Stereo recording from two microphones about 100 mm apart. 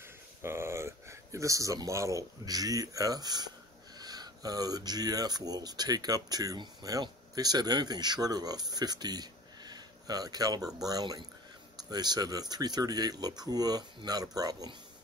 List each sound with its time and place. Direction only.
0.4 s speech: 25° right (ahead or behind)